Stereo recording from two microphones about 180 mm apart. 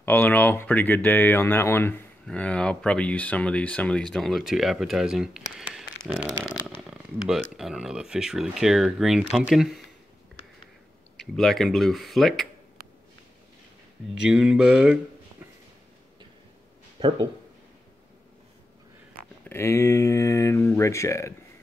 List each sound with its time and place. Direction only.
0.0 s speech: 10° left (ahead or behind)
5.6 s a sound: 5° right (ahead or behind)
6.0 s speech: centre (ahead or behind)
6.4 s a sound: 10° left (ahead or behind)
6.9 s speech: 5° right (ahead or behind)
11.1 s speech: centre (ahead or behind)
14.2 s speech: 5° right (ahead or behind)
19.4 s speech: 15° left (ahead or behind)